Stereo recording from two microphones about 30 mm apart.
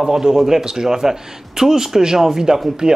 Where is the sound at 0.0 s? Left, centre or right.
Centre.